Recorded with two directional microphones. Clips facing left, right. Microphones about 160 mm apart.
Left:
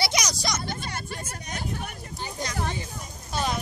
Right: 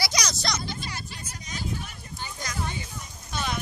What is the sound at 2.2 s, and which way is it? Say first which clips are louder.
Vehicle: left 3 dB; 30° left (ahead or behind).